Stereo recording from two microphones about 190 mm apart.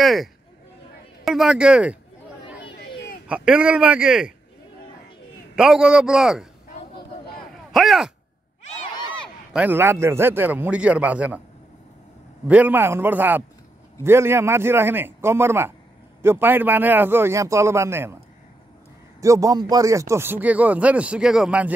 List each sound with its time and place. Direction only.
0.0 s a man's voice: centre (ahead or behind)
2.7 s a sound: 65° left (ahead or behind)
3.3 s a man's voice: 5° right (ahead or behind)
5.6 s a man's voice: 5° right (ahead or behind)
7.7 s a man's voice: centre (ahead or behind)
9.5 s speech: 10° right (ahead or behind)
12.4 s speech: 10° right (ahead or behind)
19.2 s speech: 15° right (ahead or behind)